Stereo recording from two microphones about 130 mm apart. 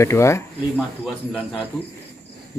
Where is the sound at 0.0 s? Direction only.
20° left (ahead or behind).